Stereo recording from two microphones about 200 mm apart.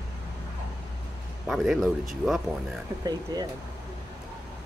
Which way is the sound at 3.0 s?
20° right (ahead or behind).